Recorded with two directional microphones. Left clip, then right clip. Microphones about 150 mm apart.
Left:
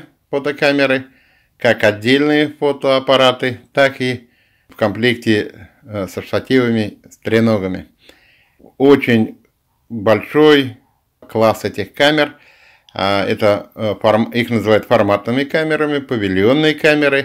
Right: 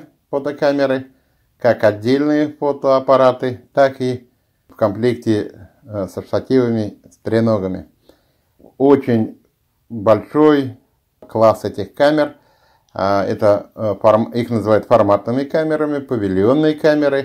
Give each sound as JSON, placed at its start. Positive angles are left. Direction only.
{"t": 0.3, "sound": "speech", "side_deg": 35}